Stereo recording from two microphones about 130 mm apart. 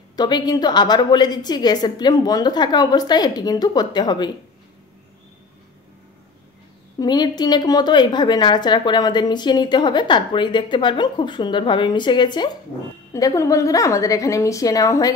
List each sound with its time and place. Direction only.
0.1 s a woman's voice: 30° left (ahead or behind)
7.0 s a woman's voice: 30° left (ahead or behind)
13.1 s a woman's voice: 25° left (ahead or behind)